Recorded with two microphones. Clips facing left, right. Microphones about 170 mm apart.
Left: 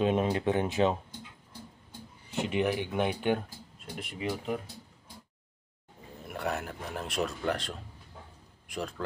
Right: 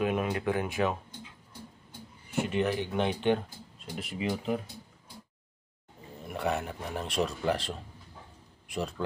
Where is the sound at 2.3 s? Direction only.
15° left (ahead or behind); by 4.5 s centre (ahead or behind).